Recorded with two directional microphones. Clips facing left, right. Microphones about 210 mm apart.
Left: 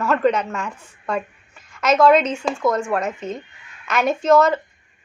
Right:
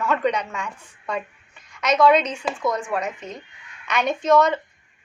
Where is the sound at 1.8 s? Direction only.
Centre (ahead or behind).